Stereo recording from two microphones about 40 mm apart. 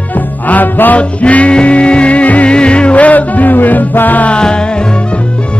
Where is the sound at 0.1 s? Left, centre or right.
Left.